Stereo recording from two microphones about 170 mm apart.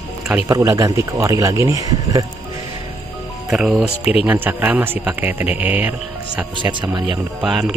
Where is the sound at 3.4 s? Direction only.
5° right (ahead or behind).